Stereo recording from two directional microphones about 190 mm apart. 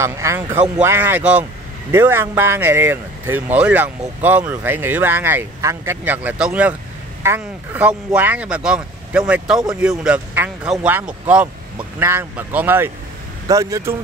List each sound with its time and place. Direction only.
0.0 s speech: 15° right (ahead or behind)